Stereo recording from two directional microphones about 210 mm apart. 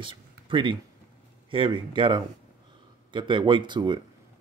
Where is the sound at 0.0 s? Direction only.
25° right (ahead or behind).